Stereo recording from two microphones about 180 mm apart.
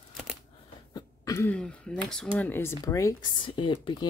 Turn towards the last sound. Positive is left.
turn(degrees=25)  # may be behind; listen again after turning